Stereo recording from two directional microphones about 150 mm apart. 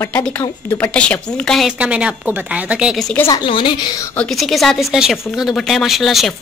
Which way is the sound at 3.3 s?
35° left (ahead or behind).